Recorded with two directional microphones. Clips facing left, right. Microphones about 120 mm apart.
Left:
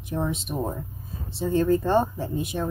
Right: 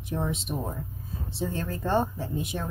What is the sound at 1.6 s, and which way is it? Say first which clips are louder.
Speech: left 7 dB; 5° left (ahead or behind).